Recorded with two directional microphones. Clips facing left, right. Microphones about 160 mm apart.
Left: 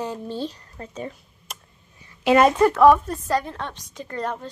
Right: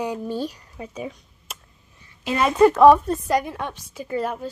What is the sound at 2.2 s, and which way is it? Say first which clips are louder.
Speech: left 7 dB; 70° left (ahead or behind).